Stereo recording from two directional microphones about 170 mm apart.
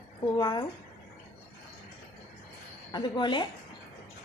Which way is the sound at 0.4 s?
25° left (ahead or behind).